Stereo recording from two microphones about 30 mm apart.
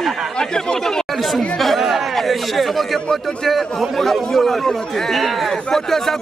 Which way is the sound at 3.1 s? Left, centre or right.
Centre.